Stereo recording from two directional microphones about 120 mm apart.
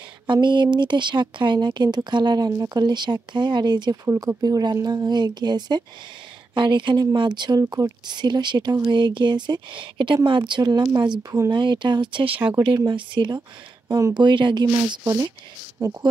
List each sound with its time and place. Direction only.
0.3 s speech: 40° right (ahead or behind)
15.0 s speech: 30° right (ahead or behind)